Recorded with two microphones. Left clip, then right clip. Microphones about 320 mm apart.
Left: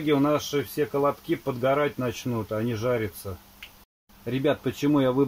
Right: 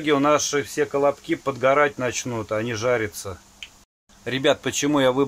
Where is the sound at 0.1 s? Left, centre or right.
Right.